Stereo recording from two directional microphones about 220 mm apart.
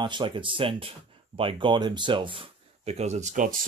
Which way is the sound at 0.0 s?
20° right (ahead or behind).